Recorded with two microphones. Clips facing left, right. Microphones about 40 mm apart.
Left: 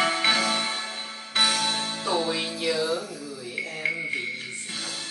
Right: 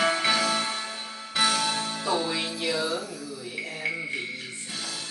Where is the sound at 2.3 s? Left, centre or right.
Centre.